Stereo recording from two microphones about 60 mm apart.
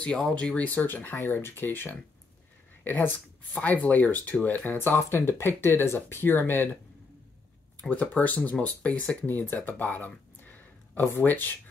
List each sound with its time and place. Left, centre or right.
0.0 s speech: centre
1.1 s speech: left
7.9 s speech: left
9.5 s speech: left